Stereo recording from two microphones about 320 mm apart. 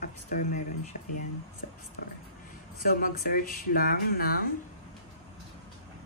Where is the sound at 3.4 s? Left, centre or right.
Left.